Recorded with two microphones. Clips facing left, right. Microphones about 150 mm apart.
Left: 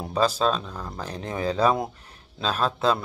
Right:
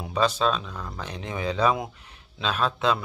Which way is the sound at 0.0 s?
35° left (ahead or behind).